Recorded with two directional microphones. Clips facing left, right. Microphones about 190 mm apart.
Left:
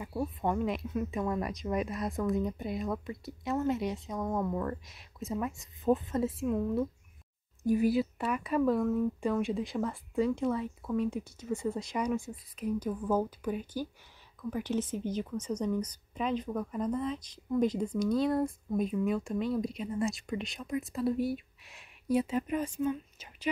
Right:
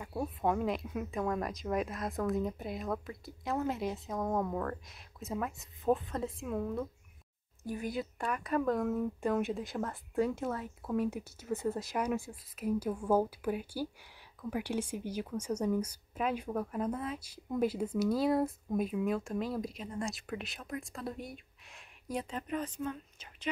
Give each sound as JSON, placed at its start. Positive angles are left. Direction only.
{"t": 0.1, "sound": "a woman's voice", "side_deg": -5}
{"t": 7.6, "sound": "a woman's voice", "side_deg": 10}